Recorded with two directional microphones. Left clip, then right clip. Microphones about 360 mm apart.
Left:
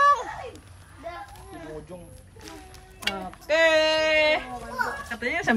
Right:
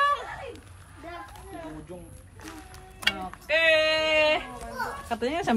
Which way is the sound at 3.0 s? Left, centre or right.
Centre.